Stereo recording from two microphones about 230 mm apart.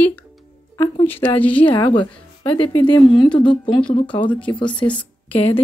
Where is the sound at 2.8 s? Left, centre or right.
Centre.